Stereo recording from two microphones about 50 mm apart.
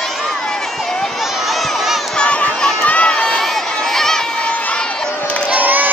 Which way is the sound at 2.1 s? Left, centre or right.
Left.